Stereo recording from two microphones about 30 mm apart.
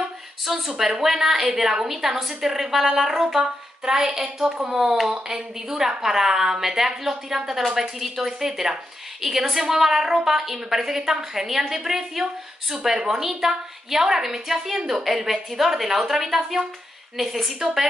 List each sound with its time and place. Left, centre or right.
0.5 s a woman's voice: centre